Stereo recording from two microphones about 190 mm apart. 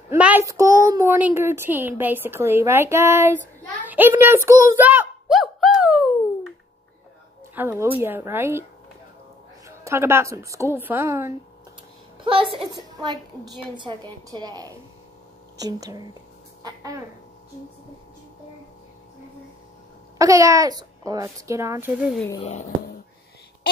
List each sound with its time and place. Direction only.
0.1 s a woman's voice: 10° right (ahead or behind)
7.5 s a woman's voice: 10° right (ahead or behind)
9.7 s a woman's voice: 15° right (ahead or behind)
12.3 s a woman's voice: 25° right (ahead or behind)
20.2 s a woman's voice: 15° right (ahead or behind)
22.4 s speech: 35° left (ahead or behind)